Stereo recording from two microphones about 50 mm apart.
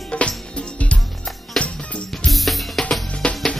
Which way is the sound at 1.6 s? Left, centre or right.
Centre.